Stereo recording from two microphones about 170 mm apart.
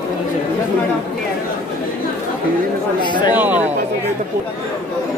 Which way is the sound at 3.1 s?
25° left (ahead or behind).